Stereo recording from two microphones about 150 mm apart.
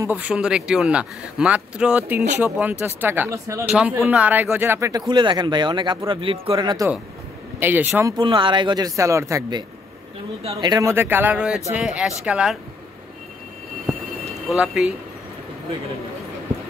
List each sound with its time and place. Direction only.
0.0 s speech: 10° right (ahead or behind)
3.6 s speech: 10° right (ahead or behind); by 6.9 s 30° right (ahead or behind)
7.6 s speech: 15° right (ahead or behind)
8.2 s speech: 35° right (ahead or behind); by 12.5 s 5° right (ahead or behind)
14.5 s speech: 5° right (ahead or behind)